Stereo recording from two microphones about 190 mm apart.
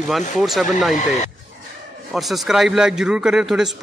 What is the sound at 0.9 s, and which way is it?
Speech, 35° left (ahead or behind).